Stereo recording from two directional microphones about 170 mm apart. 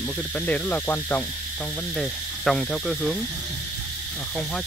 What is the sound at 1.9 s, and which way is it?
Speech, 5° left (ahead or behind).